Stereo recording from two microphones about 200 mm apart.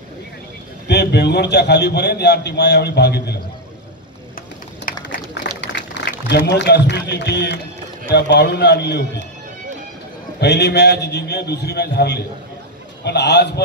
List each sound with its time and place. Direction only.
0.8 s a man's voice: 55° left (ahead or behind)
4.9 s run: 45° left (ahead or behind)
5.6 s a sound: 60° left (ahead or behind)
6.5 s a man's voice: 55° left (ahead or behind)
10.4 s a man's voice: 55° left (ahead or behind)